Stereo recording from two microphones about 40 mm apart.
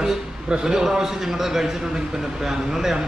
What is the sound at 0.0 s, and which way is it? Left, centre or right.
A man's voice, centre.